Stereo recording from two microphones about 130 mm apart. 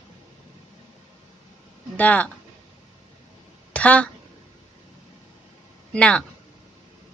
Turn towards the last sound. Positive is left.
turn(degrees=10)  # may be behind; listen again after turning